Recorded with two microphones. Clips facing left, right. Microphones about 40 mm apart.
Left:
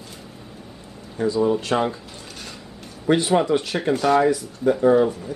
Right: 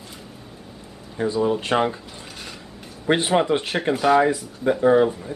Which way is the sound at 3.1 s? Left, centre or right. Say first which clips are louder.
Left 1 dB; right.